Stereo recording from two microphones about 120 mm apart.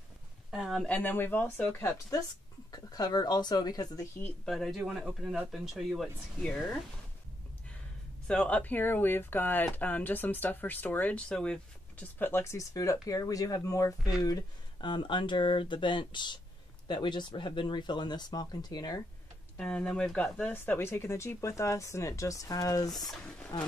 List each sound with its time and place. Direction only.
0.5 s a sound: centre (ahead or behind)
0.8 s speech: 15° left (ahead or behind); by 4.0 s 30° left (ahead or behind)
4.5 s speech: centre (ahead or behind)
8.3 s speech: 10° left (ahead or behind); by 19.0 s 35° left (ahead or behind)
19.5 s speech: 10° left (ahead or behind); by 22.8 s 30° left (ahead or behind)
22.8 s speech: centre (ahead or behind)
23.5 s speech: 35° left (ahead or behind)